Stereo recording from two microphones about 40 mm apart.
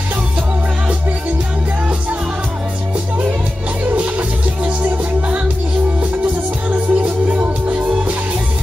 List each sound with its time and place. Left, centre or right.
6.7 s music: right